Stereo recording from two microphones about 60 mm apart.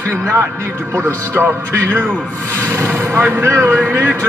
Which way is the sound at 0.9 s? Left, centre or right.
Right.